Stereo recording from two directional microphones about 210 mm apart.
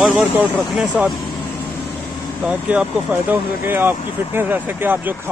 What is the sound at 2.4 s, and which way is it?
Speech, 5° right (ahead or behind).